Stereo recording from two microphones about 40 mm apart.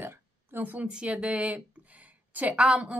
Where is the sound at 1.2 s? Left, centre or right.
Right.